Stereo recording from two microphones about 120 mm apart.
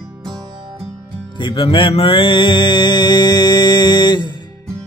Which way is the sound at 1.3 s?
40° left (ahead or behind).